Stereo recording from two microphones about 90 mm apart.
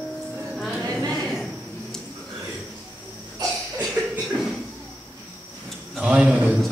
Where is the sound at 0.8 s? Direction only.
40° right (ahead or behind).